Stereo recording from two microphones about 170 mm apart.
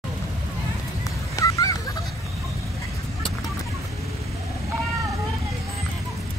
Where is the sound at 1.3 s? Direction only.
20° left (ahead or behind).